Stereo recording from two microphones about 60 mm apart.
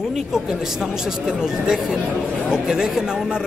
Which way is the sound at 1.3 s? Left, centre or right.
Centre.